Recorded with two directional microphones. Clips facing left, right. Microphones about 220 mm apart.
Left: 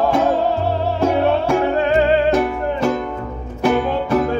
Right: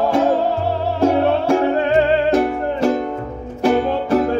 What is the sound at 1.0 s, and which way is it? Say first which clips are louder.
Music: right 2 dB; 35° right (ahead or behind).